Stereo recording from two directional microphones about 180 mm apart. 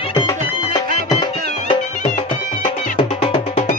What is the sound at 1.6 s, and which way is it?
Music, 35° left (ahead or behind).